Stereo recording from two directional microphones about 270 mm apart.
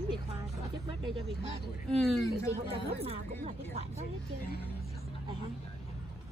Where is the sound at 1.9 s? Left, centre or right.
Centre.